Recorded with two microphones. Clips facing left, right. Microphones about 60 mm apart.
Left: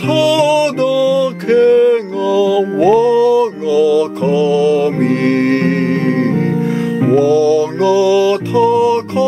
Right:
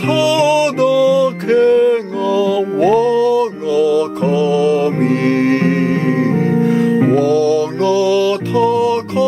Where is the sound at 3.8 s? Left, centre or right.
Centre.